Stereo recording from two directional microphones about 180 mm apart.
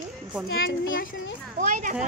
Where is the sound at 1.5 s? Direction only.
45° right (ahead or behind).